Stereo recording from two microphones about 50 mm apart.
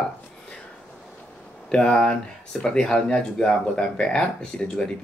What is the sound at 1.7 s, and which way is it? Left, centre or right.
Speech, left.